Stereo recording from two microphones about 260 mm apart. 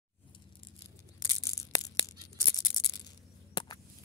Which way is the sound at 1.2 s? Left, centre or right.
Centre.